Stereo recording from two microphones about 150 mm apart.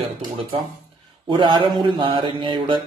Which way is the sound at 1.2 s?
30° right (ahead or behind).